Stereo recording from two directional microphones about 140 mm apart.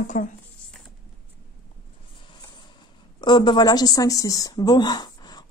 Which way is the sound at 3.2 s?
30° left (ahead or behind).